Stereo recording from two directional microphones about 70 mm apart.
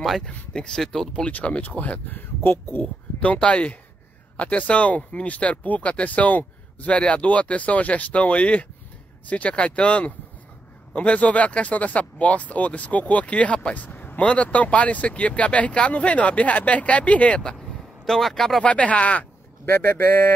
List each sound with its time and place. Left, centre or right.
0.0 s speech: centre
1.2 s speech: centre; by 2.8 s left
2.8 s speech: centre
19.7 s speech: left